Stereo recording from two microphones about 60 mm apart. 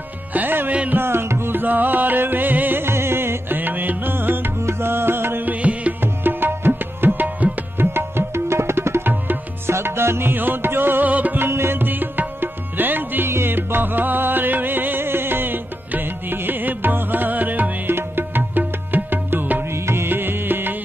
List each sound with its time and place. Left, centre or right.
0.3 s music: right
0.9 s music: right
6.2 s music: right